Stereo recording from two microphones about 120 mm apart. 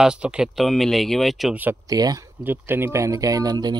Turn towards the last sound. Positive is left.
turn(degrees=-35)  # may be behind; listen again after turning